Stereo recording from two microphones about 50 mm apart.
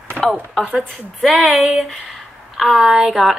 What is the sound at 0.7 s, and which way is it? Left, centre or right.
A woman's voice, centre.